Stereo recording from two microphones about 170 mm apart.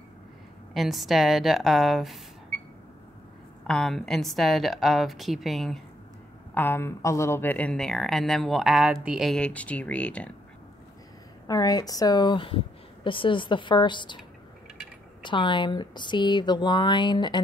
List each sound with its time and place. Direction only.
0.7 s speech: centre (ahead or behind)
3.6 s speech: centre (ahead or behind)
6.5 s speech: 10° left (ahead or behind)
11.4 s a woman's voice: 20° left (ahead or behind)
15.2 s a woman's voice: 30° left (ahead or behind)